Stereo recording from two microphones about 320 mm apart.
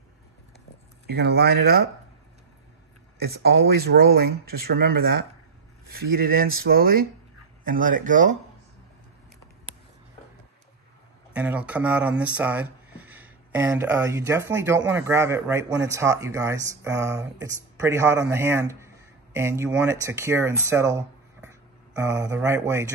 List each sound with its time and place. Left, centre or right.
1.0 s speech: right
3.2 s speech: right
11.3 s speech: centre